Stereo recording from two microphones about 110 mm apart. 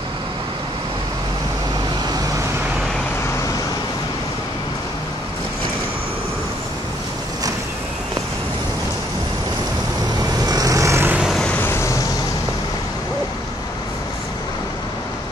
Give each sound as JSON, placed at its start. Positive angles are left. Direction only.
{"t": 10.4, "sound": "vehicle", "side_deg": -35}
{"t": 11.1, "sound": "vehicle", "side_deg": -10}
{"t": 11.6, "sound": "vehicle", "side_deg": 25}